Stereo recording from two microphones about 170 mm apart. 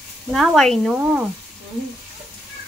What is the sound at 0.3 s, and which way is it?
Speech, centre (ahead or behind).